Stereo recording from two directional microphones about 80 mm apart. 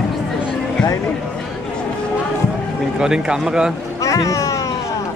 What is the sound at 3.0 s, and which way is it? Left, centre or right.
Speech, centre.